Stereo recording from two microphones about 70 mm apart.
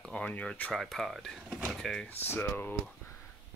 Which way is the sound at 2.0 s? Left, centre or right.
Left.